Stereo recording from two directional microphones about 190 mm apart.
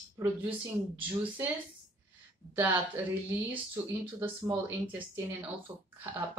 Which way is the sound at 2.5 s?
10° right (ahead or behind).